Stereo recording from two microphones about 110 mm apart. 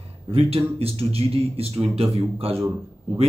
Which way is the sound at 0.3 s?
60° right (ahead or behind).